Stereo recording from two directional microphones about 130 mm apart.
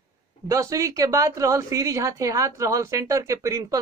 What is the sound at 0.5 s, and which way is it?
A woman's voice, 25° right (ahead or behind).